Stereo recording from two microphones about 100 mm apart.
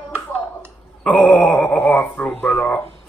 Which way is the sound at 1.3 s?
10° left (ahead or behind).